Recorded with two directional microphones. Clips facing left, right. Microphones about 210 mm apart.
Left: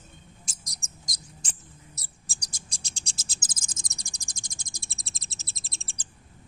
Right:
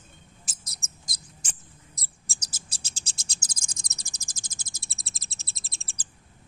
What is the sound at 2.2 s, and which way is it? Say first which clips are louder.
Bird: right 1 dB; centre (ahead or behind).